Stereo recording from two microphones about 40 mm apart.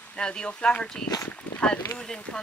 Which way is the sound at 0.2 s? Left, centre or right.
Left.